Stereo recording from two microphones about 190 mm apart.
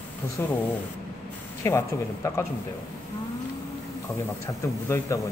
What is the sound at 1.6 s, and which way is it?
Speech, 15° left (ahead or behind).